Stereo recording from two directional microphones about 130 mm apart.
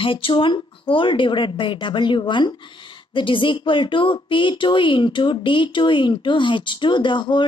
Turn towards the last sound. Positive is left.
turn(degrees=35)  # may be behind; listen again after turning